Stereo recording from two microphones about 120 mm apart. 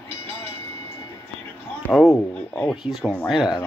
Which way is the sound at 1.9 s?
5° left (ahead or behind).